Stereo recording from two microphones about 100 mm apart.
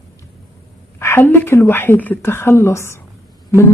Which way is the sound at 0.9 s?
20° left (ahead or behind).